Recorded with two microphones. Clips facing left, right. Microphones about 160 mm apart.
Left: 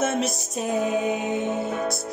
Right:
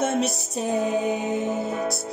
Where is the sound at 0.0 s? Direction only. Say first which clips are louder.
Right 1 dB; 30° right (ahead or behind).